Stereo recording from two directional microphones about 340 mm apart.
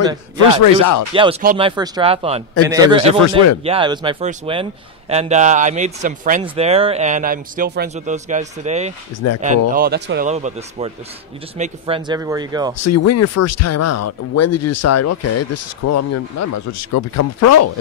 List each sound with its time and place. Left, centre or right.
0.5 s speech: left
1.4 s speech: centre
12.7 s speech: left